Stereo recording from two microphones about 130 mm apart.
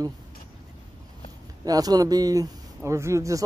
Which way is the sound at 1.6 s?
30° right (ahead or behind).